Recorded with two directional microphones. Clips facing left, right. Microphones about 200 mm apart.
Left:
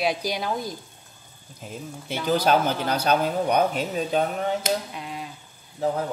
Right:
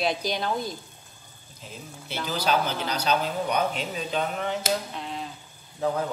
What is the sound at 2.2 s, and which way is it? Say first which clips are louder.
A man's voice: left 5 dB; 50° left (ahead or behind).